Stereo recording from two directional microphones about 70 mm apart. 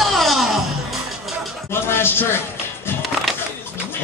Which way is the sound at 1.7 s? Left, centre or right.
Left.